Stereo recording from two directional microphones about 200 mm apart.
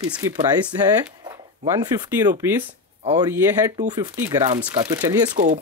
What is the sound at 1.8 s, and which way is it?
Speech, 20° right (ahead or behind).